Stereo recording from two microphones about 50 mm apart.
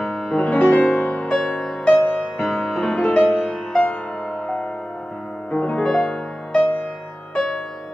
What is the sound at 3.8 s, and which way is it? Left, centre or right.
Music, left.